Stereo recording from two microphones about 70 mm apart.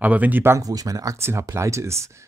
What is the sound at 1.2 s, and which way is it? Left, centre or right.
Speech, right.